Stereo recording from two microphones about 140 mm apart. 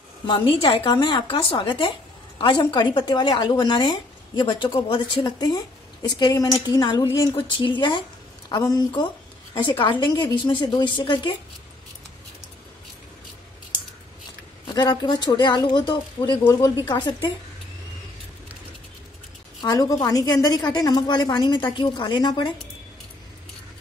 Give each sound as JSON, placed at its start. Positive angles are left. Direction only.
{"t": 0.3, "sound": "a woman's voice", "side_deg": 35}
{"t": 14.7, "sound": "a woman's voice", "side_deg": 30}
{"t": 19.6, "sound": "a woman's voice", "side_deg": 25}